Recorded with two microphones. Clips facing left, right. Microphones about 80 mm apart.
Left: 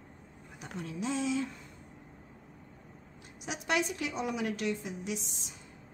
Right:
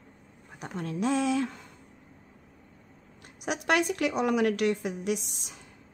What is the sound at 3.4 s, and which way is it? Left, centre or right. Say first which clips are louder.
A woman's voice: right 6 dB; right.